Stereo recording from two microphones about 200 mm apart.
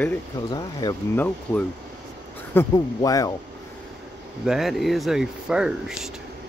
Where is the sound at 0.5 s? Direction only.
20° left (ahead or behind).